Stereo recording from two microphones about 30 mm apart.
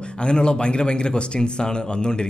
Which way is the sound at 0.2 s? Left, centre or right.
Left.